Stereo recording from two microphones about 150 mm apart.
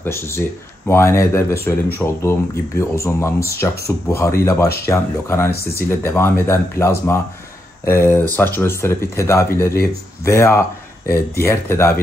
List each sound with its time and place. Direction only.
0.0 s speech: 15° left (ahead or behind)